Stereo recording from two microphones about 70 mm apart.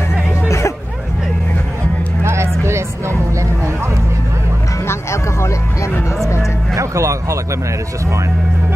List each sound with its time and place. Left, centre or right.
0.5 s music: left
2.2 s a sound: right
4.8 s music: left
6.7 s music: right